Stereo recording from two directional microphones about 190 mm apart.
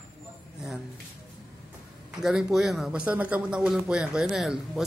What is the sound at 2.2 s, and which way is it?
A man's voice, centre (ahead or behind).